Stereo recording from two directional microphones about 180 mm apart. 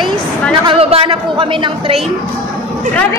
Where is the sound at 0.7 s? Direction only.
30° right (ahead or behind).